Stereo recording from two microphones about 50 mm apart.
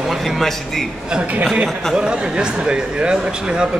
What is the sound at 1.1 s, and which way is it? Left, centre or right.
Speech, right.